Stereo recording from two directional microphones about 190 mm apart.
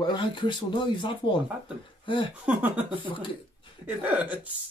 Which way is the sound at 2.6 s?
10° right (ahead or behind).